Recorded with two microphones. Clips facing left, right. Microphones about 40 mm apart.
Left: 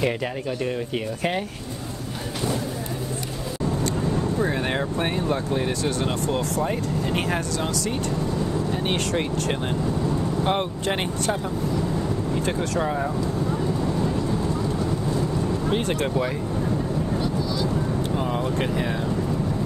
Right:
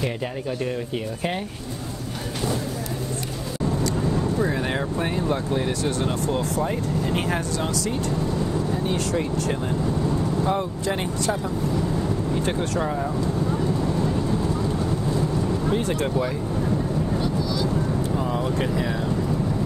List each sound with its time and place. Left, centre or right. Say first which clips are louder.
4.0 s boat: even; centre
4.5 s speech: even; left
4.7 s speech: even; left
10.0 s vehicle: right 1 dB; centre
10.4 s speech: even; left
11.9 s vehicle: right 1 dB; centre
12.8 s speech: left 1 dB; left
14.2 s vehicle: right 1 dB; centre
15.7 s speech: even; left
16.5 s vehicle: right 2 dB; centre
18.5 s speech: even; left